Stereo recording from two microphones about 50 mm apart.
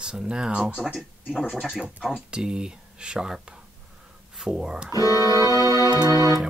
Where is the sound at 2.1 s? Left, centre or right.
Centre.